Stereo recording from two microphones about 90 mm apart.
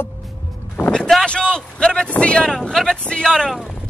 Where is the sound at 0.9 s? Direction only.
5° left (ahead or behind).